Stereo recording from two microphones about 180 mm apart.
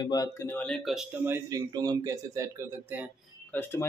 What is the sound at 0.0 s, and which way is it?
Speech, 20° left (ahead or behind).